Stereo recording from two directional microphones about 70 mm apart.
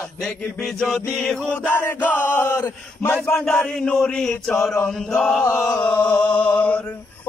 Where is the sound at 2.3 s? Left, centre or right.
Left.